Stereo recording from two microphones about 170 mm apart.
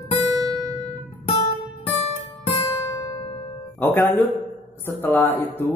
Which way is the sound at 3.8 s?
10° left (ahead or behind).